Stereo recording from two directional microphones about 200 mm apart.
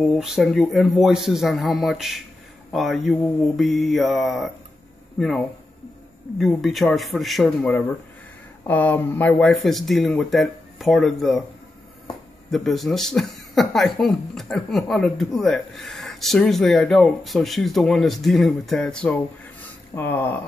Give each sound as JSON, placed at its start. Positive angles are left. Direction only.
{"t": 0.0, "sound": "a man's voice", "side_deg": 0}
{"t": 12.4, "sound": "a man's voice", "side_deg": 0}